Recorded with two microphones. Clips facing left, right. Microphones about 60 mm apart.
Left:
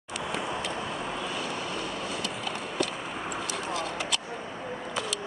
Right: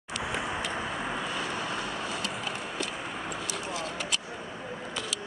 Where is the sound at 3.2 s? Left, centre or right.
Centre.